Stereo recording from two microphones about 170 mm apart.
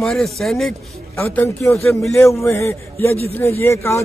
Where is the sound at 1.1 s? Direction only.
15° left (ahead or behind).